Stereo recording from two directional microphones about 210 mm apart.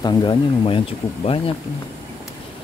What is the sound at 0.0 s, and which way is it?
Speech, 20° left (ahead or behind).